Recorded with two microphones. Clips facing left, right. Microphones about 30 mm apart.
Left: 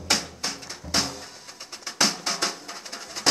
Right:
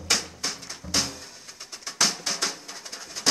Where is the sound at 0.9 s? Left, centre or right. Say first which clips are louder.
Left 1 dB; left.